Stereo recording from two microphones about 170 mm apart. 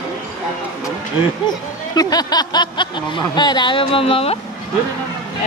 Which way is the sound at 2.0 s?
20° left (ahead or behind).